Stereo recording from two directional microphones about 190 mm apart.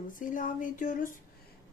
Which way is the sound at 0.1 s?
45° left (ahead or behind).